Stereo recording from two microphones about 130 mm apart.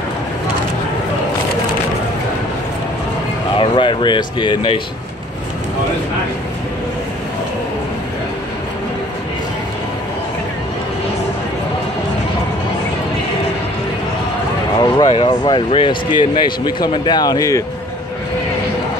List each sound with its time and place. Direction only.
3.5 s speech: 40° left (ahead or behind)
14.8 s speech: 35° left (ahead or behind)